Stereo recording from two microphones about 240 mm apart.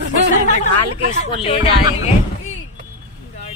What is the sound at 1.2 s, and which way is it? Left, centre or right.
Speech, left.